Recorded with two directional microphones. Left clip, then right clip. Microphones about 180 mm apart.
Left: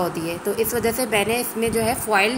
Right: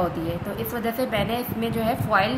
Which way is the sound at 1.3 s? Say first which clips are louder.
Left 5 dB; 40° right (ahead or behind).